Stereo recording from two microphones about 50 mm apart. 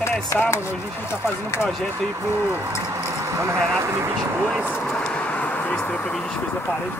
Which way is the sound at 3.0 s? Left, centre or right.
Right.